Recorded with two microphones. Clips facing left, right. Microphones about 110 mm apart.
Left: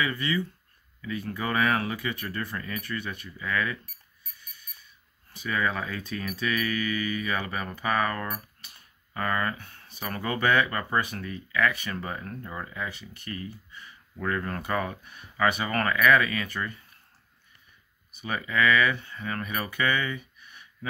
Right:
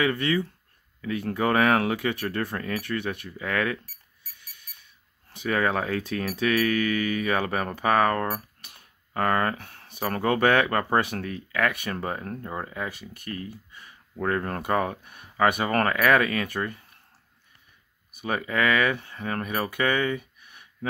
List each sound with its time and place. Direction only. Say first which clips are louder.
0.0 s speech: right 4 dB; 60° right (ahead or behind)
4.4 s alarm clock: left 1 dB; 65° right (ahead or behind)
5.3 s speech: right 4 dB; 60° right (ahead or behind)
18.1 s speech: right 2 dB; 50° right (ahead or behind)